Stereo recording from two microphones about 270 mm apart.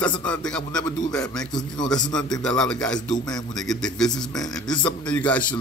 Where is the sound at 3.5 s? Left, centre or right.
Centre.